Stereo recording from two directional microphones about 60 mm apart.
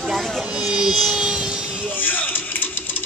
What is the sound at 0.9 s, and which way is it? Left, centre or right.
Vehicle, centre.